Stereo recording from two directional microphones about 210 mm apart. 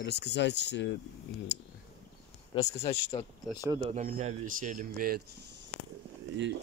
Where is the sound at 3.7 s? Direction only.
35° right (ahead or behind).